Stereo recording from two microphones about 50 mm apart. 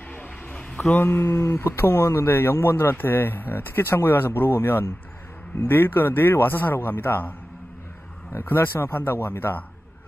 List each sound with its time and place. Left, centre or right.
0.9 s speech: left
8.3 s speech: left